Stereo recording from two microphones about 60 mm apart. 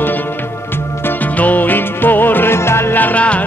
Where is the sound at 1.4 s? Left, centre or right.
Left.